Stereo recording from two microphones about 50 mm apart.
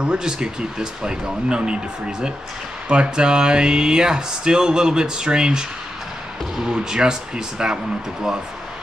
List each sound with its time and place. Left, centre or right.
0.0 s speech: centre